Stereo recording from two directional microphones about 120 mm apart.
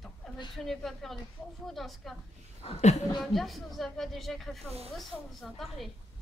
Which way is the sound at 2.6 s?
65° left (ahead or behind).